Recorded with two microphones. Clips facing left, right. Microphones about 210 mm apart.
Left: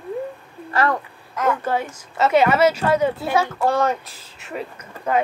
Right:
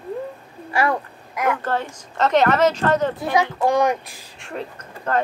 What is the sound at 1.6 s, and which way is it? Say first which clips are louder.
Speech: left 1 dB; 10° left (ahead or behind).